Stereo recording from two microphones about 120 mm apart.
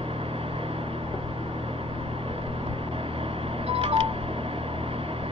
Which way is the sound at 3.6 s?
50° right (ahead or behind).